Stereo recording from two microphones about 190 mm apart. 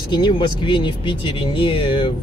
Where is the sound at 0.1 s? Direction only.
25° left (ahead or behind).